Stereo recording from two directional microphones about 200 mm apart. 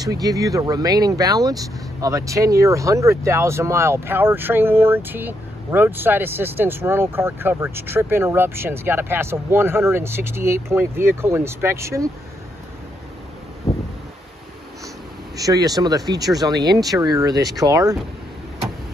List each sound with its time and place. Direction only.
0.0 s speech: 20° right (ahead or behind)
15.3 s speech: 20° right (ahead or behind)